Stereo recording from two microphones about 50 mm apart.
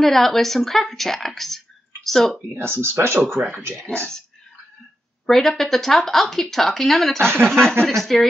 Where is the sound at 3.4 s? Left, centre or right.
Right.